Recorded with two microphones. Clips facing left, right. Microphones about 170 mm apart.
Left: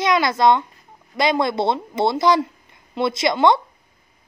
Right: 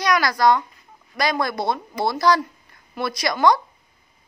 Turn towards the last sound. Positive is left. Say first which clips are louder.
# left 2 dB
turn(degrees=25)  # may be behind; listen again after turning